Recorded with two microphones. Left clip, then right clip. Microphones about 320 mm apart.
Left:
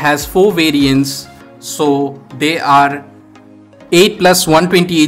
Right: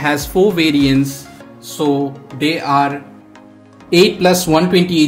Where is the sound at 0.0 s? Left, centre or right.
Centre.